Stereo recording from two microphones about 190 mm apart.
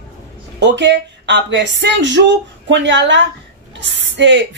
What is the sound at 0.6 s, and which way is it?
Speech, 65° right (ahead or behind).